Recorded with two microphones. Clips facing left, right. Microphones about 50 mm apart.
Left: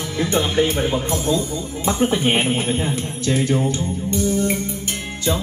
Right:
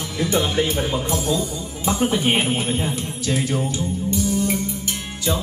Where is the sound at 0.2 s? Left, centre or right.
Left.